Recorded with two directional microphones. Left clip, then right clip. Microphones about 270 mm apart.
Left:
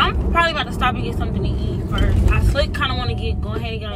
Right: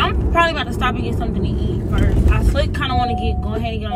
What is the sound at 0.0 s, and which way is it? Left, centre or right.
Vehicle, right.